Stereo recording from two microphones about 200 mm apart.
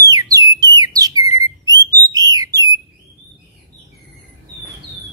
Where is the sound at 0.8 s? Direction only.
20° right (ahead or behind).